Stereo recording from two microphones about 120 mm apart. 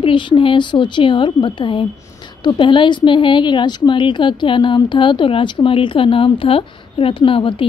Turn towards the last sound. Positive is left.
turn(degrees=50)  # may be behind; listen again after turning